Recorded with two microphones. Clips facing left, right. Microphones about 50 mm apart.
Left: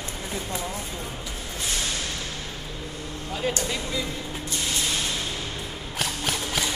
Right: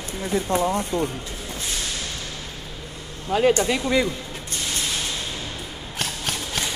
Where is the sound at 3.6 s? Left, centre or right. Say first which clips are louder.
Right 8 dB; right.